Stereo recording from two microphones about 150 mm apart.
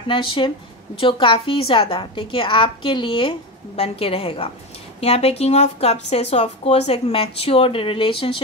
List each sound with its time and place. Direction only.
0.1 s a woman's voice: 35° left (ahead or behind)